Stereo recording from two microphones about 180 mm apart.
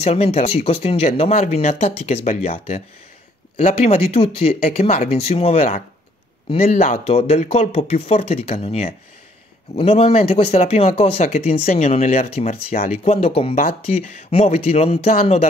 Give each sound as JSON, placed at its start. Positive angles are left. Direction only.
{"t": 0.0, "sound": "speech", "side_deg": 35}